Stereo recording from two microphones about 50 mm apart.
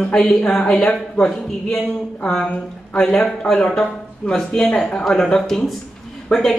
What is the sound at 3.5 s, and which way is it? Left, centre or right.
Speech, centre.